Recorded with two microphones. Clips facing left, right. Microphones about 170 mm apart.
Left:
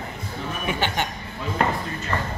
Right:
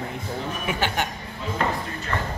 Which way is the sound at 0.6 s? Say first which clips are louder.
Left 1 dB; 5° right (ahead or behind).